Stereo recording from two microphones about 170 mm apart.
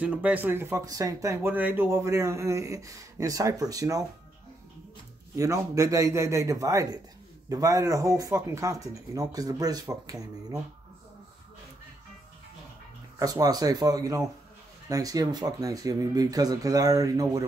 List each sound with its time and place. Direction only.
0.0 s speech: 10° right (ahead or behind)
5.3 s speech: 20° right (ahead or behind)
13.2 s speech: 20° right (ahead or behind)